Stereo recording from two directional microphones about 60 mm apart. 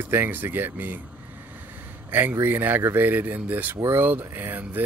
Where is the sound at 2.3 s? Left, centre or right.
Right.